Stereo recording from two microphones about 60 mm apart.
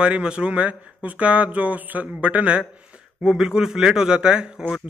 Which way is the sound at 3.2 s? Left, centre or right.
Centre.